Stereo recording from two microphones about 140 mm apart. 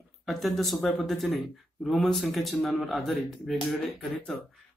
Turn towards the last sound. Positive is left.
turn(degrees=5)  # may be behind; listen again after turning